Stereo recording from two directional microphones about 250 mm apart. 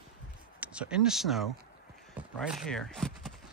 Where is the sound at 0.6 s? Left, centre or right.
Centre.